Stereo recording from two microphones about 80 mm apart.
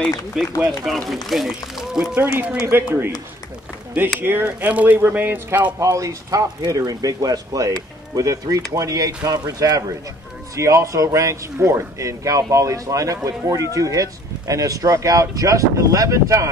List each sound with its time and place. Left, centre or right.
0.3 s speech: centre
2.1 s speech: right
4.2 s speech: right
5.8 s speech: right
10.5 s a man's voice: right